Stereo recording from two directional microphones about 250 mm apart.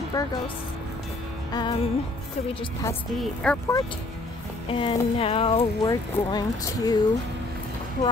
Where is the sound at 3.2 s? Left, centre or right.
Centre.